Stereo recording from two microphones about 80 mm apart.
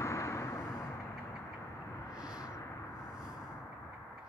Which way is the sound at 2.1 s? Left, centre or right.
Centre.